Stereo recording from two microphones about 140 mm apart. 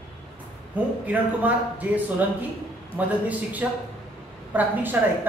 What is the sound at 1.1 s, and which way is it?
A woman's voice, 10° right (ahead or behind).